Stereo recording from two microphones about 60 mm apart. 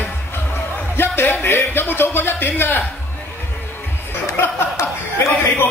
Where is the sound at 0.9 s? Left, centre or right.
Left.